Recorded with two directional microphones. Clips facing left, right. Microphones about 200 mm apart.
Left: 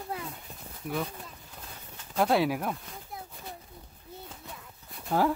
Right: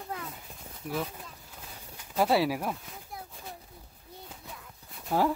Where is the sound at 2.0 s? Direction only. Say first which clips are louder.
Even; 5° right (ahead or behind).